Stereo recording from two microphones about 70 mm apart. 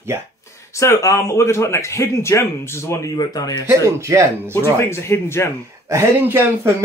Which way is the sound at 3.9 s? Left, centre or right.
Right.